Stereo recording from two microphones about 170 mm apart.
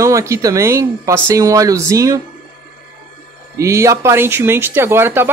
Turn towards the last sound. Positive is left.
turn(degrees=-15)  # may be behind; listen again after turning